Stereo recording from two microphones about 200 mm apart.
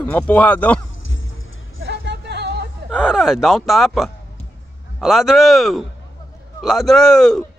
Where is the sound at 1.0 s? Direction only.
80° left.